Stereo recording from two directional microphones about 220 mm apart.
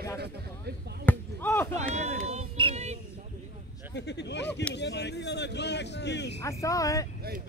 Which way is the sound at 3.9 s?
50° left (ahead or behind).